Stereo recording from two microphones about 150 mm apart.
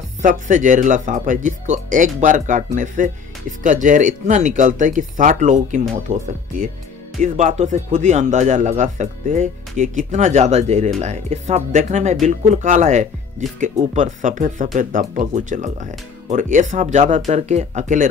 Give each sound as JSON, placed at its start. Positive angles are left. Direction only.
{"t": 0.2, "sound": "speech", "side_deg": -60}
{"t": 7.2, "sound": "speech", "side_deg": -55}